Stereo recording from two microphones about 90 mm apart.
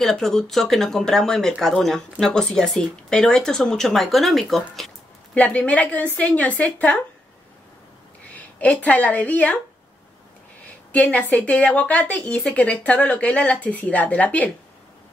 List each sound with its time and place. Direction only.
0.0 s speech: 5° left (ahead or behind)
5.3 s a woman's voice: 15° left (ahead or behind)
8.4 s a woman's voice: 15° left (ahead or behind)
10.9 s a woman's voice: 15° left (ahead or behind)